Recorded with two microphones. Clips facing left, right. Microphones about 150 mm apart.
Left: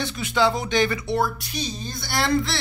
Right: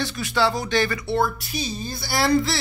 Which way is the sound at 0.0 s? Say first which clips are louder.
Left 1 dB; 20° left (ahead or behind).